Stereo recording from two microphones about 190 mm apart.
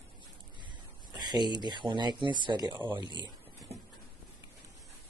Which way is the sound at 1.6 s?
25° right (ahead or behind).